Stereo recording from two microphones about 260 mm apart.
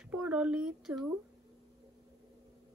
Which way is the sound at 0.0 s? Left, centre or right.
Centre.